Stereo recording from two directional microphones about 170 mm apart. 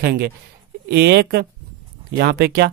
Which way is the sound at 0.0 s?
70° right (ahead or behind).